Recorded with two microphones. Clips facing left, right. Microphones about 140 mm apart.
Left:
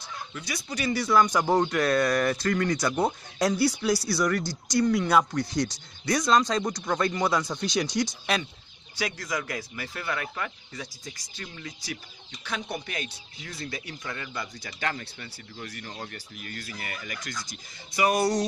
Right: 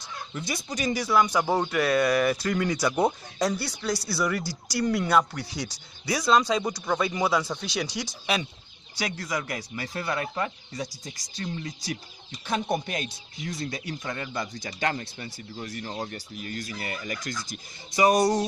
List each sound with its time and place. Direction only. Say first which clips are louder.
0.3 s speech: right 4 dB; 25° right (ahead or behind); by 3.1 s 10° right (ahead or behind)
3.1 s speech: left 1 dB; centre (ahead or behind)
8.9 s speech: even; 30° right (ahead or behind)
12.4 s speech: right 6 dB; 40° right (ahead or behind)
17.2 s speech: right 3 dB; 45° right (ahead or behind)
17.9 s speech: right 3 dB; 35° right (ahead or behind)